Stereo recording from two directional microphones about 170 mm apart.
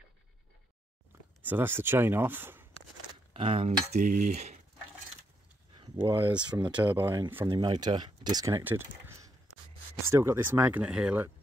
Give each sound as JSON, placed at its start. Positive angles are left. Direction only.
{"t": 1.4, "sound": "speech", "side_deg": -10}
{"t": 3.3, "sound": "cutlery", "side_deg": -30}
{"t": 3.9, "sound": "cutlery", "side_deg": -50}
{"t": 5.9, "sound": "speech", "side_deg": -15}
{"t": 7.4, "sound": "speech", "side_deg": -25}